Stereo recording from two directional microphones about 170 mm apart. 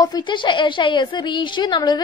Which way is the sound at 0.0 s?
25° left (ahead or behind).